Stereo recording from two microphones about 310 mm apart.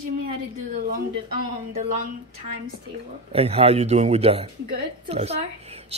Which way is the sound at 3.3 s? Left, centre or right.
Centre.